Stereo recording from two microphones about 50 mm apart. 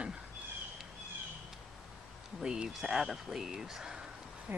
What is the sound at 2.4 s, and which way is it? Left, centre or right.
Speech, centre.